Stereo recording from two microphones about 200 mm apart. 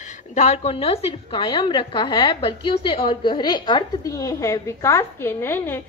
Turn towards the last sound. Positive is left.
turn(degrees=10)  # may be behind; listen again after turning